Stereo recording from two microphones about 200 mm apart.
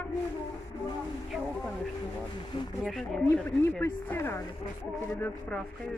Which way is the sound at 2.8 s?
Centre (ahead or behind).